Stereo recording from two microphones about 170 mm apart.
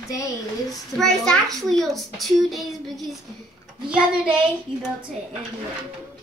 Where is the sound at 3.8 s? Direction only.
5° right (ahead or behind).